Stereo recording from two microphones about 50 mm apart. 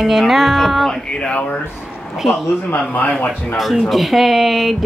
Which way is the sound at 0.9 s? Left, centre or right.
Centre.